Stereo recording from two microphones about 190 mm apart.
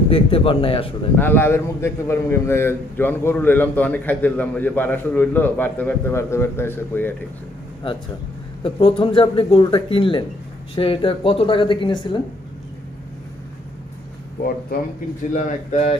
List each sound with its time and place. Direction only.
0.1 s speech: 30° left (ahead or behind)
1.1 s a man's voice: 10° left (ahead or behind)
8.6 s speech: 30° left (ahead or behind)
15.3 s speech: 40° left (ahead or behind)